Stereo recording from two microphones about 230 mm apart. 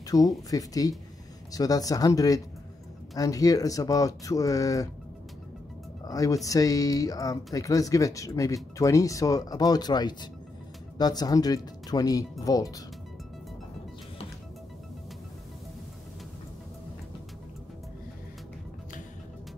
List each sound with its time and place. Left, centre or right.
0.0 s speech: centre
6.0 s speech: centre